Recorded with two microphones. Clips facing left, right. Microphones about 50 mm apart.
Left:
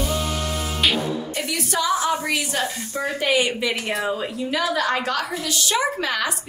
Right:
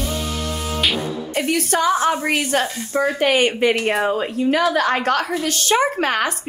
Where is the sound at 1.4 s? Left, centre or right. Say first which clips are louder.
Right 8 dB; right.